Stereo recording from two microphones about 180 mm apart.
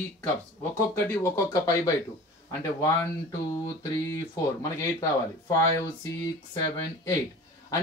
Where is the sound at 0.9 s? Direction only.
15° left (ahead or behind).